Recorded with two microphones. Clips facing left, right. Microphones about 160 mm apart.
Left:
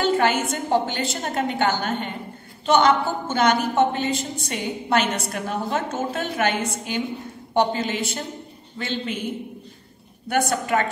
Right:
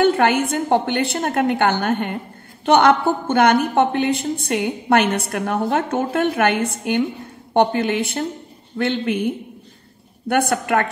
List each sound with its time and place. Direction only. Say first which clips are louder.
0.0 s a woman's voice: right 4 dB; 60° right (ahead or behind)